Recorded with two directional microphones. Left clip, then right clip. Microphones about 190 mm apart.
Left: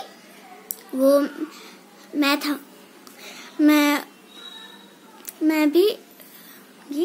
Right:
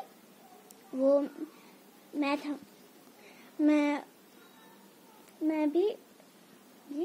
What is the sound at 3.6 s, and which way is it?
Child singing, 20° left (ahead or behind).